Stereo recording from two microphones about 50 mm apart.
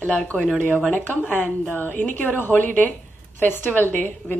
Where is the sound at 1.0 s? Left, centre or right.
Left.